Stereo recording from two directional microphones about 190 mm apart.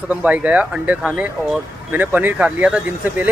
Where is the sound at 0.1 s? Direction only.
5° right (ahead or behind).